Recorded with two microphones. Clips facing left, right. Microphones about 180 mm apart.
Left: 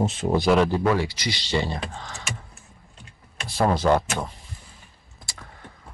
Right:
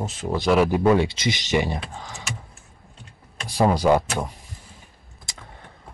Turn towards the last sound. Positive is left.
turn(degrees=-20)  # may be behind; listen again after turning